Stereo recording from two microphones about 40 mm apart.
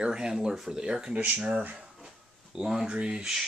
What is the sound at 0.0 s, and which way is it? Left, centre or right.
Speech, right.